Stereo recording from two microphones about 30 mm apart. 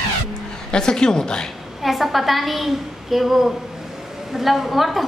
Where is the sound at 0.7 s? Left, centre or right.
Left.